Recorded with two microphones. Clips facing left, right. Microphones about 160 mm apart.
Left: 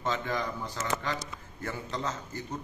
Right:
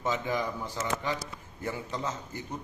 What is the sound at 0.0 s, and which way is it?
A man's voice, 15° right (ahead or behind).